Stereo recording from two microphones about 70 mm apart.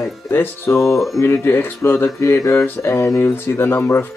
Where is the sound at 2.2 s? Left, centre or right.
Left.